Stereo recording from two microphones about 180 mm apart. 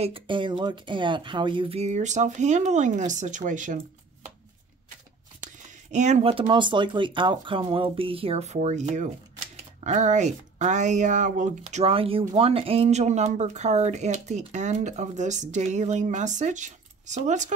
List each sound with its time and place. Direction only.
0.0 s speech: 30° right (ahead or behind); by 3.8 s 45° right (ahead or behind)
5.4 s a sound: 40° right (ahead or behind)
6.3 s speech: 25° right (ahead or behind)